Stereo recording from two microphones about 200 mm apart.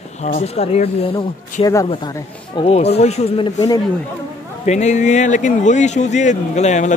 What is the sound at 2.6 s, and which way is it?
A man's voice, 30° left (ahead or behind).